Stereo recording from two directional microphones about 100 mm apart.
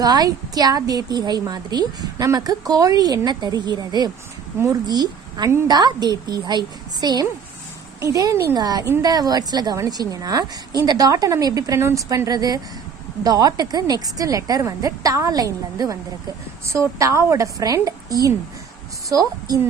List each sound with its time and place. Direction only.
0.0 s a woman's voice: 40° right (ahead or behind)
8.0 s a woman's voice: 35° right (ahead or behind)
8.5 s a woman's voice: 40° right (ahead or behind)